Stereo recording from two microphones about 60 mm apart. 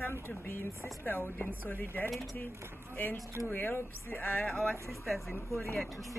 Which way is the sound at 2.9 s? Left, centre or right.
Left.